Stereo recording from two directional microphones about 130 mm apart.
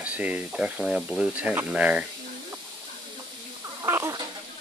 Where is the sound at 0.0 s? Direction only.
10° right (ahead or behind).